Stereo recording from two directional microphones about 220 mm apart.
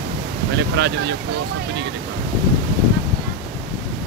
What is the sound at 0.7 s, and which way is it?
Speech, 50° right (ahead or behind).